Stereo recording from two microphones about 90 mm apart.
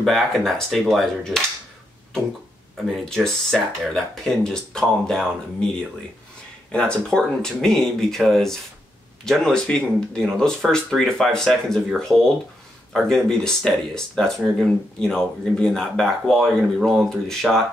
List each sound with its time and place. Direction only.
0.0 s speech: centre (ahead or behind)
2.8 s speech: centre (ahead or behind)
6.7 s speech: 10° left (ahead or behind)
12.1 s speech: 5° right (ahead or behind)
12.9 s speech: 5° left (ahead or behind)